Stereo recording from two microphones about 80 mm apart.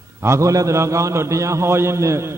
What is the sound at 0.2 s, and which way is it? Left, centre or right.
A man's voice, right.